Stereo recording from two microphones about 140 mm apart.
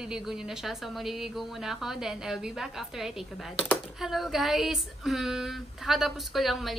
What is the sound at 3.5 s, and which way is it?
Speech, 10° left (ahead or behind).